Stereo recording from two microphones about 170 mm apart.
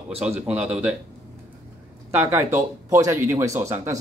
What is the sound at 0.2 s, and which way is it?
Speech, 10° right (ahead or behind).